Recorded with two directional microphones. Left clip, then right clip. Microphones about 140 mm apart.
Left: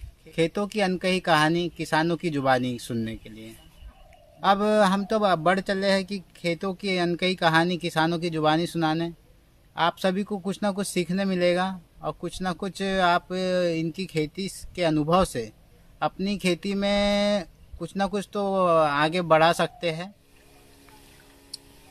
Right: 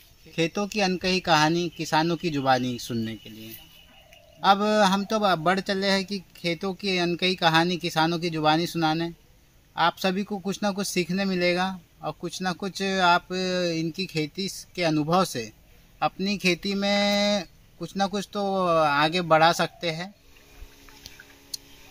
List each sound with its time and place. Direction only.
0.3 s speech: 35° left (ahead or behind)
4.4 s speech: 35° left (ahead or behind)
10.2 s speech: 5° left (ahead or behind)
10.5 s speech: 35° left (ahead or behind)